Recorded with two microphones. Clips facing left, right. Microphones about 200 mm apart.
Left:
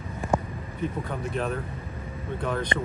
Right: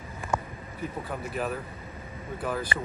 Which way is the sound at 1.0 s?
5° right (ahead or behind).